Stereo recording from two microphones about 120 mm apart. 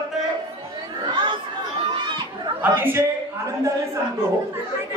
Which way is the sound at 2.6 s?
20° right (ahead or behind).